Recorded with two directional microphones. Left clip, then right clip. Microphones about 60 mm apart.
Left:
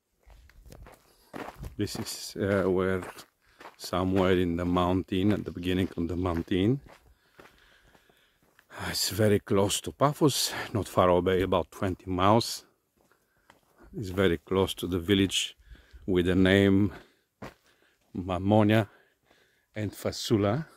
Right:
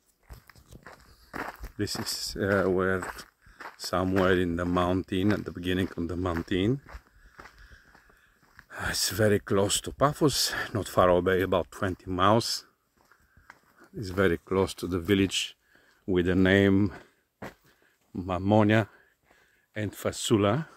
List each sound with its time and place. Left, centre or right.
1.3 s walk: right
1.8 s speech: centre
4.2 s speech: left
5.6 s speech: left
8.5 s a sound: left
9.2 s speech: left
11.2 s speech: left
12.0 s speech: left
13.9 s speech: left; by 17.1 s centre
18.2 s speech: centre
19.8 s speech: centre